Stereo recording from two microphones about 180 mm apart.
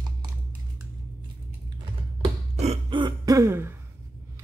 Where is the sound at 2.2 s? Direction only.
30° right (ahead or behind); by 3.7 s 15° right (ahead or behind).